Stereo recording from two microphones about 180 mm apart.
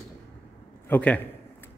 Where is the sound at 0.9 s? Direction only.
10° left (ahead or behind).